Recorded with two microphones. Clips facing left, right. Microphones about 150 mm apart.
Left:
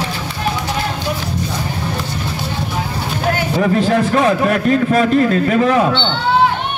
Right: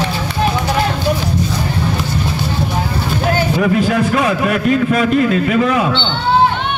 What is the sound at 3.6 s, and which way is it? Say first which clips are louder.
A man's voice: left 2 dB; 35° left (ahead or behind).